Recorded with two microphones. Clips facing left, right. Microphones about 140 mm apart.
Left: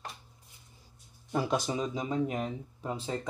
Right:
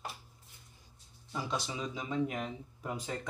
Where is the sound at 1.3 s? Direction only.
55° left (ahead or behind); by 3.2 s 30° left (ahead or behind).